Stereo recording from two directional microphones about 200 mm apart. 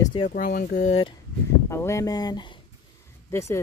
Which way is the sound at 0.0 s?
25° left (ahead or behind).